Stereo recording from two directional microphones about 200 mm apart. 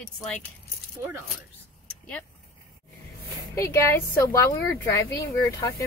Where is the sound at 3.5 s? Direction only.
15° left (ahead or behind).